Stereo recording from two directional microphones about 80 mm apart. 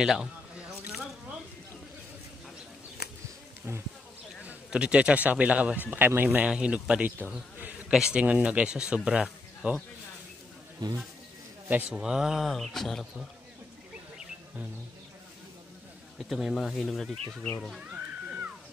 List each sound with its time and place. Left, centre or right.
0.0 s a sound: centre
4.5 s a man's voice: centre
10.8 s speech: right
11.7 s speech: right
12.0 s speech: centre
16.2 s speech: centre
17.9 s music: centre